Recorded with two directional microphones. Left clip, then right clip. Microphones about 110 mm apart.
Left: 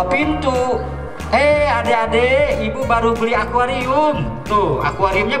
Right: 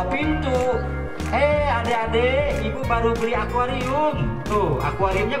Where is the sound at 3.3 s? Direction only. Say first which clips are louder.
Left 6 dB; 35° left (ahead or behind).